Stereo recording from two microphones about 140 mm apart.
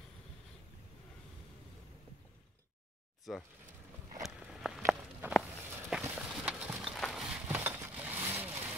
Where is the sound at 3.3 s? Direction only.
5° right (ahead or behind).